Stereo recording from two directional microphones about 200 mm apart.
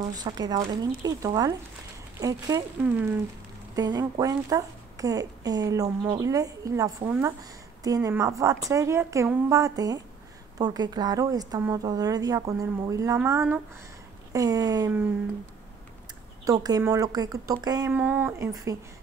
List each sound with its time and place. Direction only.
0.1 s a woman's voice: 20° right (ahead or behind)
16.4 s a woman's voice: 20° right (ahead or behind)